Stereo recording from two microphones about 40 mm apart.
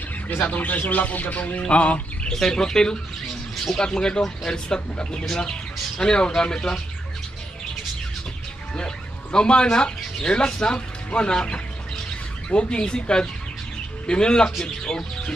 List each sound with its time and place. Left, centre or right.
0.4 s speech: left
1.7 s a sound: left
2.2 s speech: centre
8.7 s speech: left
14.9 s speech: centre